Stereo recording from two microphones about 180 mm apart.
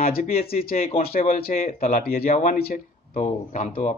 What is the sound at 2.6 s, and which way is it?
Speech, 35° left (ahead or behind).